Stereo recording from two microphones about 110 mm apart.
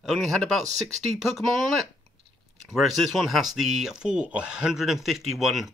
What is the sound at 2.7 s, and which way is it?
Speech, centre (ahead or behind).